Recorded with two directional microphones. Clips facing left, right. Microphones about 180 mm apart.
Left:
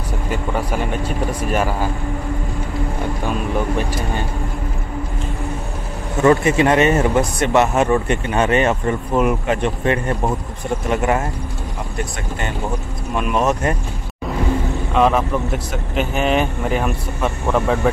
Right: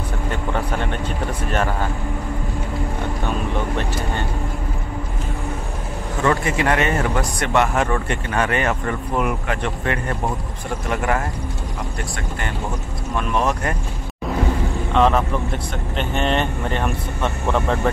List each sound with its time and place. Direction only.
0.3 s speech: 10° left (ahead or behind)
3.5 s speech: 10° left (ahead or behind)
6.2 s speech: 20° left (ahead or behind)
13.1 s speech: 15° left (ahead or behind)
15.0 s speech: 5° left (ahead or behind)